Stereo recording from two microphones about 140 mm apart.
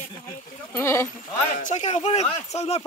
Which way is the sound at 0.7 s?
15° left (ahead or behind).